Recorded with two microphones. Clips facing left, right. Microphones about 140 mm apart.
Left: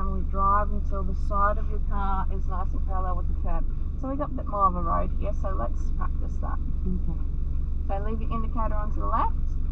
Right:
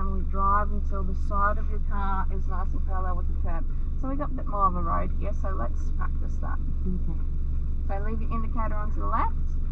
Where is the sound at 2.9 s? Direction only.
15° left (ahead or behind).